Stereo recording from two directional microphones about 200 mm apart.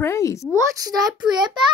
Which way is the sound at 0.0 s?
15° left (ahead or behind).